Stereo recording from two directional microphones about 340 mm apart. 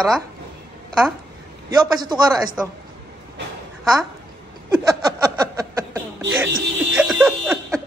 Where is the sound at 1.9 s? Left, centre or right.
Centre.